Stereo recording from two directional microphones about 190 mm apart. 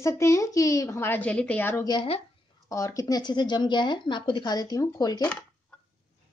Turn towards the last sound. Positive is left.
turn(degrees=20)  # may be behind; listen again after turning